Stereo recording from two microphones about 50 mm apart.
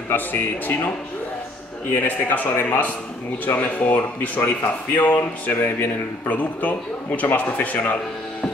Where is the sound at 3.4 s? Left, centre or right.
Left.